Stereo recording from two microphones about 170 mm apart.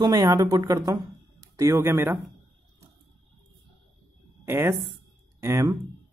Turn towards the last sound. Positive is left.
turn(degrees=-15)  # may be behind; listen again after turning